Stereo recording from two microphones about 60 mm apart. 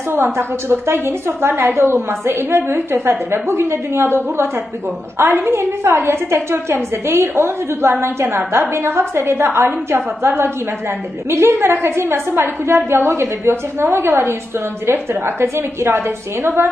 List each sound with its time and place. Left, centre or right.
0.1 s a woman's voice: right
5.2 s a woman's voice: right